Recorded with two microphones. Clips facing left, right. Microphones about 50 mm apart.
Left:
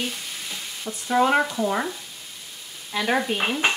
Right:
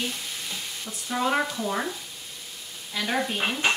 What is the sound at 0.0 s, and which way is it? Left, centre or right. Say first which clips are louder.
Stir: left 1 dB; centre.